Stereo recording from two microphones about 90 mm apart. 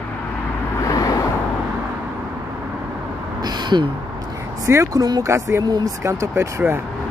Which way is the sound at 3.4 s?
50° right (ahead or behind).